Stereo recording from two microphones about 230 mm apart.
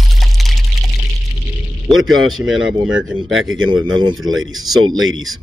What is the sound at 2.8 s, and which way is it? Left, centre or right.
Speech, right.